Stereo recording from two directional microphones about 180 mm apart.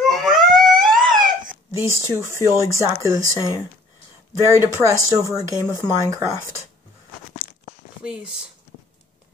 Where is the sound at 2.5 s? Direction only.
15° right (ahead or behind).